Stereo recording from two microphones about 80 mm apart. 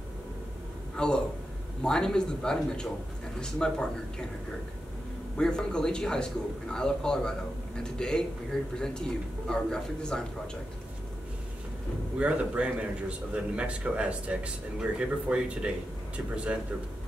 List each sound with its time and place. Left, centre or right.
0.9 s a man's voice: centre
5.4 s a man's voice: centre
12.2 s speech: centre